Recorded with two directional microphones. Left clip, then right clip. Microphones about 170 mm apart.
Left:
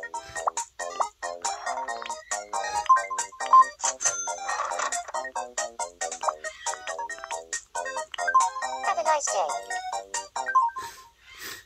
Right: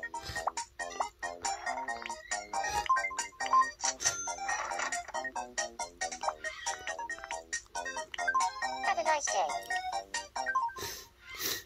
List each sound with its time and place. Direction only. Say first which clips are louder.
0.0 s music: left 6 dB; 35° left (ahead or behind)